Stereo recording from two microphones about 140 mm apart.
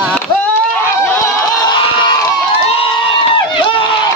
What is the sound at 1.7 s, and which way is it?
Crowd, 35° left (ahead or behind).